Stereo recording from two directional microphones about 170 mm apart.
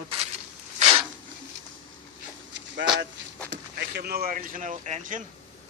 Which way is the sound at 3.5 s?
75° right (ahead or behind).